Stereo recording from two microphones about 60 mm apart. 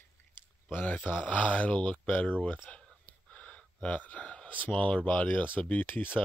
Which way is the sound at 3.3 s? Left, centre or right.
Left.